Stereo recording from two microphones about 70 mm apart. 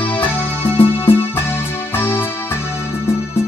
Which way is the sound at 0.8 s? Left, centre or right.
Left.